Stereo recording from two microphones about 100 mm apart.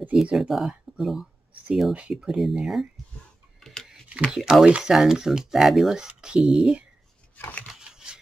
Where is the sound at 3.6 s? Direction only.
Centre (ahead or behind).